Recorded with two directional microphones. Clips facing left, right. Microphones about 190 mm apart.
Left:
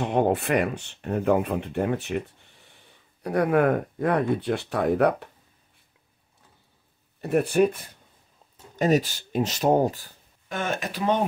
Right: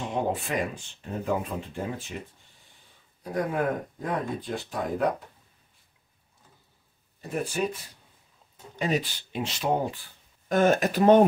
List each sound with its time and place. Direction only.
0.0 s speech: 60° left (ahead or behind)
7.2 s speech: 65° left (ahead or behind)
8.7 s speech: 45° left (ahead or behind)
10.5 s speech: 40° right (ahead or behind)